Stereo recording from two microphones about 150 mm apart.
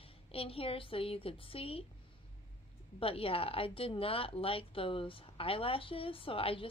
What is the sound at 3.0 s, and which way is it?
Speech, 40° left (ahead or behind).